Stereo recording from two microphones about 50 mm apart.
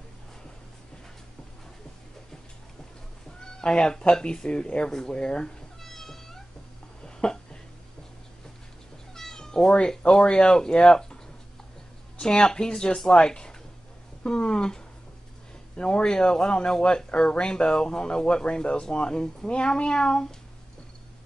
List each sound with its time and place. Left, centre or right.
3.3 s speech: centre
5.8 s cat: centre
7.2 s a sound: centre
9.1 s cat: centre
9.8 s speech: centre
12.2 s speech: centre